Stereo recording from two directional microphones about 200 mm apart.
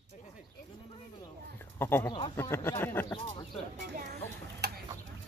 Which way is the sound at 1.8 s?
10° left (ahead or behind).